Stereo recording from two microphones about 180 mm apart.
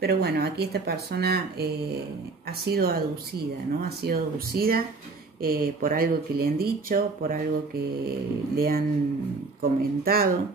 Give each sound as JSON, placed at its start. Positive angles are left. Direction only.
{"t": 0.0, "sound": "speech", "side_deg": -65}
{"t": 8.5, "sound": "speech", "side_deg": -55}